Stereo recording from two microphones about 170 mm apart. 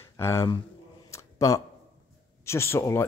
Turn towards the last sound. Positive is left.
turn(degrees=15)  # may be behind; listen again after turning